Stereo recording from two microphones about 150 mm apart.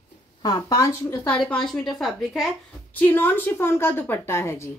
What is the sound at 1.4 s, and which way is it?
A woman's voice, 5° left (ahead or behind).